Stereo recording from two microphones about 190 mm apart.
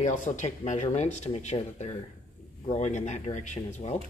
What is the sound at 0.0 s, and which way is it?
A man's voice, 40° left (ahead or behind).